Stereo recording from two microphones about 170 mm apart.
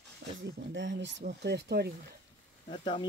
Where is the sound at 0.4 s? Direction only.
85° right.